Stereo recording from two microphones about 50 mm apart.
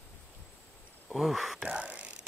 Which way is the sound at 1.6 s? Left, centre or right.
Right.